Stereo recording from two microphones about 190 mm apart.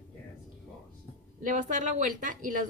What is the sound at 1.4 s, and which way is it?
Speech, 40° right (ahead or behind).